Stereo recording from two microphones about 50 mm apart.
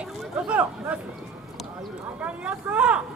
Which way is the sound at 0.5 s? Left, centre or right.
Right.